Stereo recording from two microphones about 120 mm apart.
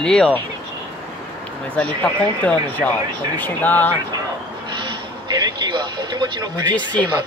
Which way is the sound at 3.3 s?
15° left (ahead or behind).